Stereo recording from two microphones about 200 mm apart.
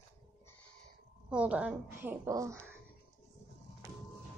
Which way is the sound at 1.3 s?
5° right (ahead or behind).